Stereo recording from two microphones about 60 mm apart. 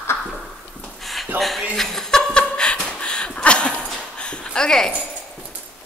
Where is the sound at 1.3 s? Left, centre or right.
Right.